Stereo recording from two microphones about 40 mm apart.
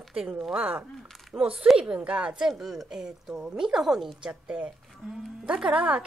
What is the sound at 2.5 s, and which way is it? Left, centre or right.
A woman's voice, centre.